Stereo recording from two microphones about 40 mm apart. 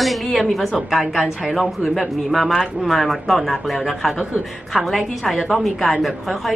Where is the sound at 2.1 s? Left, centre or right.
Centre.